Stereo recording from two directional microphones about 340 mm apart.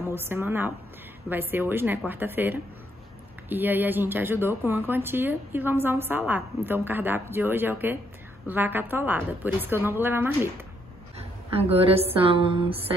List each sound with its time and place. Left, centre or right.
0.1 s a woman's voice: centre
11.5 s a woman's voice: centre